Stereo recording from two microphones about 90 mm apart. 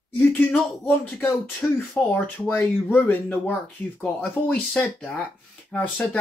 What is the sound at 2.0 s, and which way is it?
Speech, 15° left (ahead or behind).